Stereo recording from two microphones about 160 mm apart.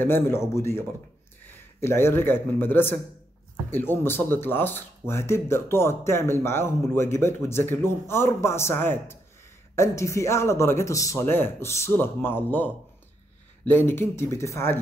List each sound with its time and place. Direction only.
0.0 s speech: 15° left (ahead or behind)